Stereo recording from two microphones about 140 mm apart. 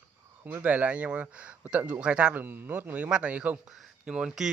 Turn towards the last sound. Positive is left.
turn(degrees=-5)  # may be behind; listen again after turning